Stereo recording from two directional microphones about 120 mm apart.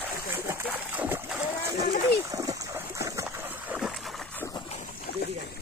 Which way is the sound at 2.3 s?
25° right (ahead or behind).